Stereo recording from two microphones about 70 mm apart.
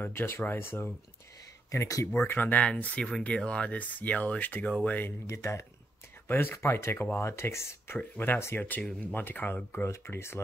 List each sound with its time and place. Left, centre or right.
0.0 s speech: left
1.7 s speech: left
2.2 s speech: left
5.2 s speech: left
6.2 s speech: left
9.8 s speech: left